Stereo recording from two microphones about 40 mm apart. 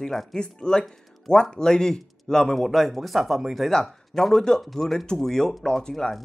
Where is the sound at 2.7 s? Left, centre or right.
Centre.